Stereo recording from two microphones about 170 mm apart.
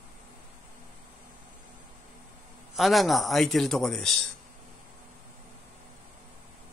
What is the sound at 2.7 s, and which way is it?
A man's voice, centre (ahead or behind).